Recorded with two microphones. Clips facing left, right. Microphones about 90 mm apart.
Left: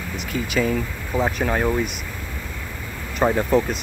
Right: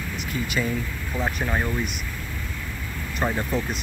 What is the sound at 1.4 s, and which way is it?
Speech, 65° left (ahead or behind).